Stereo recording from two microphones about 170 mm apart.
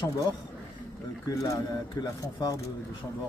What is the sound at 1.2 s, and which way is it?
Speech, 20° left (ahead or behind).